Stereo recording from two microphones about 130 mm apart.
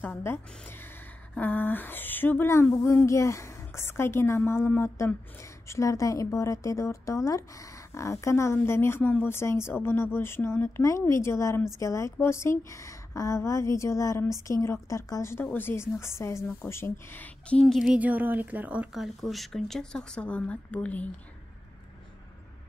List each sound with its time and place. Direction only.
0.0 s a woman's voice: 15° left (ahead or behind)